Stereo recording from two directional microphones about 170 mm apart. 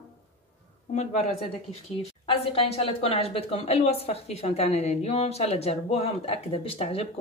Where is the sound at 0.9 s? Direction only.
40° left (ahead or behind).